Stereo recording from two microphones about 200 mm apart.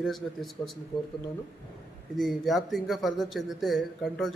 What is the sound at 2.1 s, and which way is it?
A man's voice, centre (ahead or behind).